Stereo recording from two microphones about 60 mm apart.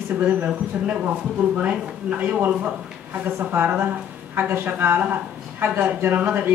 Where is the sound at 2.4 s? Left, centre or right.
Right.